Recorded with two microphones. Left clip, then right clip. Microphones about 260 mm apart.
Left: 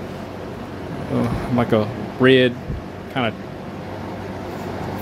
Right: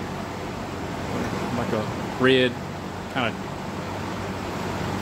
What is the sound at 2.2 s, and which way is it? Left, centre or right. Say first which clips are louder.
Speech: left 5 dB; left.